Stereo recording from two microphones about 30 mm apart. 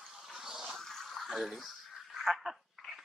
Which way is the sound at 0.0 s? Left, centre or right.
Centre.